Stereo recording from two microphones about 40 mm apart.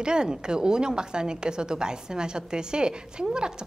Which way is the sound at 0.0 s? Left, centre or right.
Right.